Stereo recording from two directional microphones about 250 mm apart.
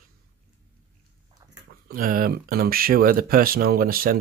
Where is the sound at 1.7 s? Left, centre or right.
Right.